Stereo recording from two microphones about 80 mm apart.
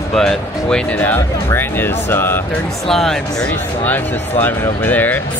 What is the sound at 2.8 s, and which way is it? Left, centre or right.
Speech, centre.